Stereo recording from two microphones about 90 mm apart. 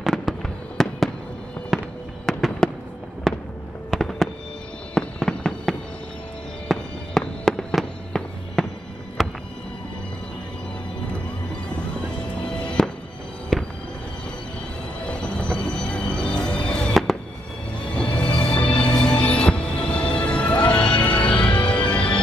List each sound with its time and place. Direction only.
0.0 s fireworks: centre (ahead or behind)
3.9 s fireworks: centre (ahead or behind)
9.2 s a sound: centre (ahead or behind)
12.4 s music: 10° left (ahead or behind)
15.0 s music: 10° left (ahead or behind)
16.9 s fireworks: centre (ahead or behind)
17.9 s music: 10° left (ahead or behind)